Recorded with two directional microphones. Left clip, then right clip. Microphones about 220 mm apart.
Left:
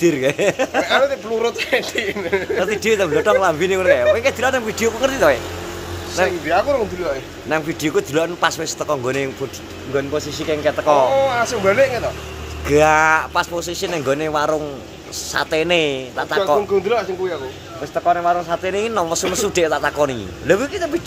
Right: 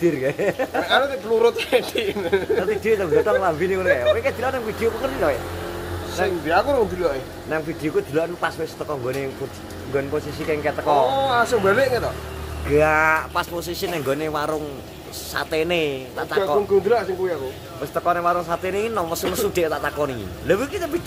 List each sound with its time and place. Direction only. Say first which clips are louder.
0.0 s speech: left 4 dB; 35° left (ahead or behind)
0.8 s speech: even; 5° left (ahead or behind)
2.6 s speech: left 3 dB; 30° left (ahead or behind)
6.4 s speech: left 2 dB; 5° right (ahead or behind)
7.4 s speech: left 6 dB; 30° left (ahead or behind)
9.9 s speech: left 3 dB; 20° left (ahead or behind)
11.1 s speech: left 2 dB; centre (ahead or behind)
12.6 s speech: left 4 dB; 25° left (ahead or behind)
17.9 s speech: left 4 dB; 5° left (ahead or behind)